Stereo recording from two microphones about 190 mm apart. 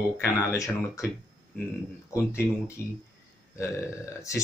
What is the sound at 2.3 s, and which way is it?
Speech, 15° left (ahead or behind).